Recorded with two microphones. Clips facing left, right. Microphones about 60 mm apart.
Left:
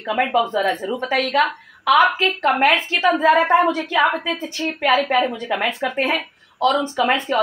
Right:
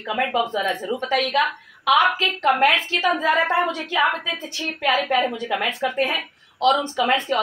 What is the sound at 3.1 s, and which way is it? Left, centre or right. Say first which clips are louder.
Speech: left 5 dB; centre.